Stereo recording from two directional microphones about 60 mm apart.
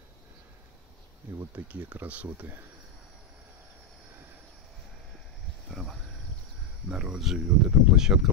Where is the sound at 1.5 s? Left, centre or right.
Right.